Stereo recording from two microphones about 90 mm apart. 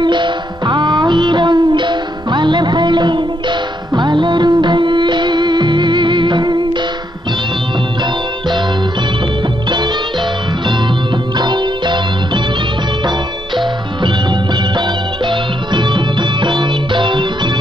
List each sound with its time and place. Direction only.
0.0 s music: 60° right (ahead or behind)
11.3 s music: 55° right (ahead or behind)
15.2 s music: 60° right (ahead or behind)